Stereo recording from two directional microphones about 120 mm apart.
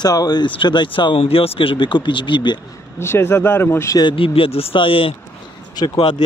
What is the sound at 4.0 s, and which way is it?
Speech, 45° left (ahead or behind).